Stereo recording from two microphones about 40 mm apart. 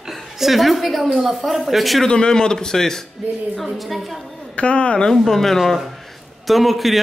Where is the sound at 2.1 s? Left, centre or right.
Centre.